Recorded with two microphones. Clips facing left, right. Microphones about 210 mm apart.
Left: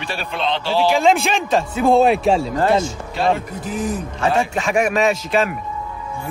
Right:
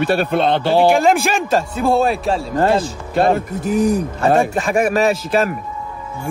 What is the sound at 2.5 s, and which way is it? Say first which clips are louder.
Speech: right 1 dB; 30° right (ahead or behind).